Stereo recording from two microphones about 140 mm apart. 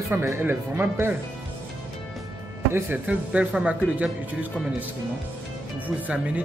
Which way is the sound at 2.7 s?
10° right (ahead or behind).